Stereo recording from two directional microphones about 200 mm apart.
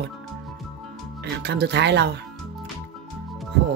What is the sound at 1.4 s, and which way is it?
Speech, 55° right (ahead or behind).